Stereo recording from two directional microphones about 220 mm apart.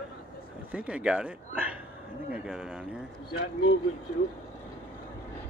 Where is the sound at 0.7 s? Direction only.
5° right (ahead or behind).